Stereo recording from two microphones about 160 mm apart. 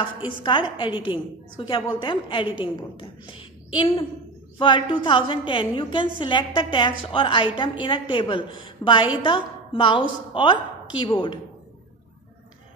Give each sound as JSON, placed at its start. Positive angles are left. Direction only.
{"t": 0.3, "sound": "a woman's voice", "side_deg": 30}